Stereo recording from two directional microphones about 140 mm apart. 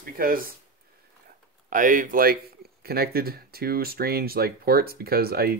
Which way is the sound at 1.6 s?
75° right (ahead or behind).